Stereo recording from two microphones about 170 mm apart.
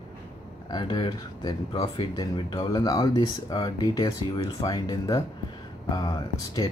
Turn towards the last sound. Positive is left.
turn(degrees=20)  # may be behind; listen again after turning